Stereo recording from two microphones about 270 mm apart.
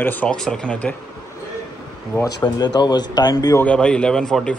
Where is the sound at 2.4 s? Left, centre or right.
Centre.